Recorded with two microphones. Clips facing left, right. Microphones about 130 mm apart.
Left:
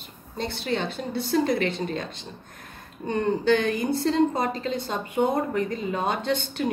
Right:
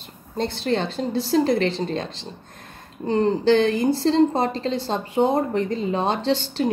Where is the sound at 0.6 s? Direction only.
40° right (ahead or behind).